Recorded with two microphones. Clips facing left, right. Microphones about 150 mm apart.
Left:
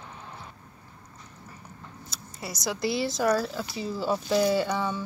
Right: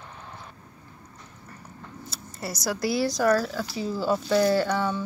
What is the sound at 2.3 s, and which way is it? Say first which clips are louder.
Speech: right 3 dB; centre (ahead or behind).